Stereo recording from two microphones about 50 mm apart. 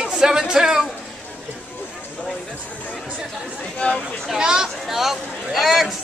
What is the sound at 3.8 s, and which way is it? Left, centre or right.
Speech, left.